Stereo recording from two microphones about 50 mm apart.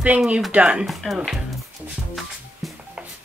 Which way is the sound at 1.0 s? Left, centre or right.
Centre.